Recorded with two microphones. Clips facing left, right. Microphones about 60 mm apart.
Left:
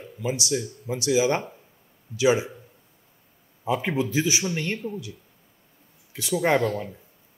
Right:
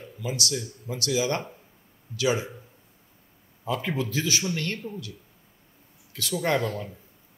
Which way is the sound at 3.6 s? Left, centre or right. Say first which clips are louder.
Left 4 dB; centre.